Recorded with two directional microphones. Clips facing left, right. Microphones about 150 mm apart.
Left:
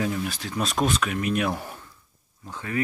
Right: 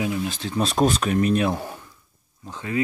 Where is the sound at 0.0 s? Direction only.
20° right (ahead or behind).